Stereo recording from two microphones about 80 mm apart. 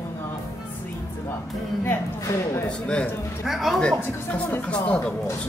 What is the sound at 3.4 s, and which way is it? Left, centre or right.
Speech, centre.